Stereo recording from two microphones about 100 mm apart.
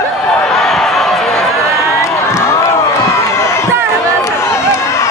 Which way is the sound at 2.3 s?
25° left (ahead or behind).